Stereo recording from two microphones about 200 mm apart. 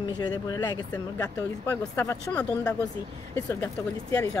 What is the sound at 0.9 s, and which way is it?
Speech, 10° left (ahead or behind).